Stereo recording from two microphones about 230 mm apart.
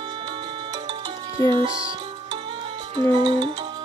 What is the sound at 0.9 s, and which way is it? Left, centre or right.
Music, right.